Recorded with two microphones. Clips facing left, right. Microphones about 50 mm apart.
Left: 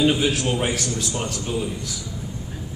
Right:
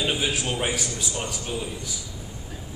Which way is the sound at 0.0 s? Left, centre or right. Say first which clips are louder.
Left 6 dB; centre.